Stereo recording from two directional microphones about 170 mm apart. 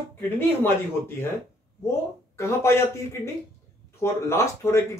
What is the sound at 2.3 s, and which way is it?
Speech, 15° left (ahead or behind).